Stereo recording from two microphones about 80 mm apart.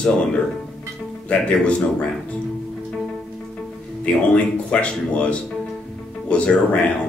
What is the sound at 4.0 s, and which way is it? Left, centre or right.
Speech, centre.